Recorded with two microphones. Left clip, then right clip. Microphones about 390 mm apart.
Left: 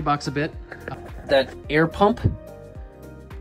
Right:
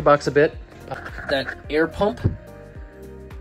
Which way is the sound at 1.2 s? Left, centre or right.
Centre.